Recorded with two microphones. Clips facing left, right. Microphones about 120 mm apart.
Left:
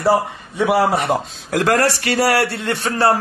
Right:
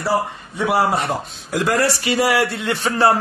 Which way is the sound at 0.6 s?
60° left (ahead or behind).